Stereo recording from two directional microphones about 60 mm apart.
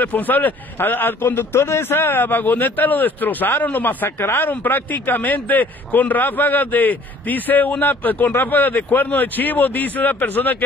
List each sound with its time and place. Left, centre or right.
0.0 s a man's voice: left